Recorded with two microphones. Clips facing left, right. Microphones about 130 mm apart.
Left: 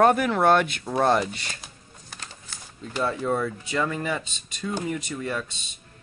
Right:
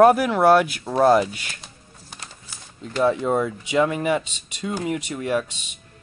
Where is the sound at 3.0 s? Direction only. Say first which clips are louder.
Right 5 dB; 20° right (ahead or behind).